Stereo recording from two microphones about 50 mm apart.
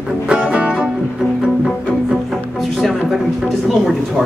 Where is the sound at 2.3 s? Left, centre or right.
Centre.